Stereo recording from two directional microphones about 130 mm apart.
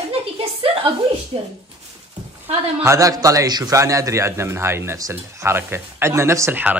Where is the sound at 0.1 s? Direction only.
50° right (ahead or behind).